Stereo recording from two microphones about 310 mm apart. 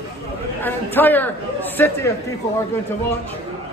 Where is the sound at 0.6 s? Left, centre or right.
Centre.